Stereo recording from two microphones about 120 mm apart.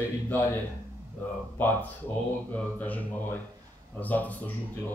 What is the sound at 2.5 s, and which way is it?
Speech, 15° left (ahead or behind).